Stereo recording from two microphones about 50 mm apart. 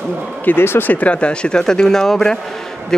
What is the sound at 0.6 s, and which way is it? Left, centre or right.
Speech, left.